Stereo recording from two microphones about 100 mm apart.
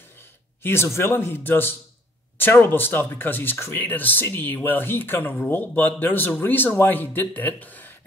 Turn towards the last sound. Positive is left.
turn(degrees=15)  # may be behind; listen again after turning